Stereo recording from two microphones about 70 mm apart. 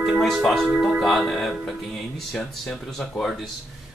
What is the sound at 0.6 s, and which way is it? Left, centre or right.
Speech, centre.